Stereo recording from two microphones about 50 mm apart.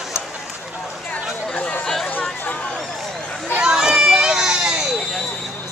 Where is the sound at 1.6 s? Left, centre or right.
Left.